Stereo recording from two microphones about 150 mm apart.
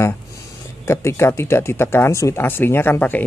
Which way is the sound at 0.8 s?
20° left (ahead or behind).